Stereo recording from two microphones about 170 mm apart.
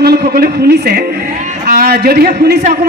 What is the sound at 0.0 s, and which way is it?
A man's voice, 65° right (ahead or behind).